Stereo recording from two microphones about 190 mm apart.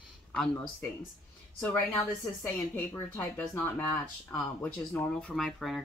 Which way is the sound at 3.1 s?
10° left (ahead or behind).